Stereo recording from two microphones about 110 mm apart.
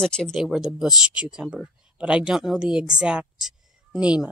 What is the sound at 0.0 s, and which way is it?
Speech, 5° left (ahead or behind).